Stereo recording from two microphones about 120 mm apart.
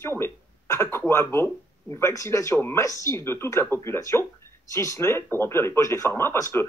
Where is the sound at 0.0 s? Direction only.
20° left (ahead or behind).